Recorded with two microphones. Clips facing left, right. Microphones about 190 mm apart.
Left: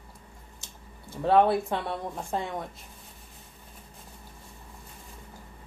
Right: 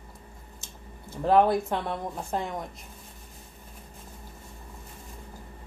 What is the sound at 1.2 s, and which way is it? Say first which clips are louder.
A woman's voice: even; 5° left (ahead or behind).